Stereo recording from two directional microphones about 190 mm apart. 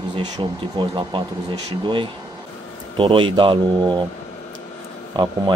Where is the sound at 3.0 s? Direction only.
25° right (ahead or behind).